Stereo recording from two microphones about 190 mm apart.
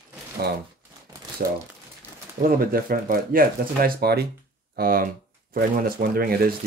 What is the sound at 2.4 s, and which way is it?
Speech, 50° right (ahead or behind).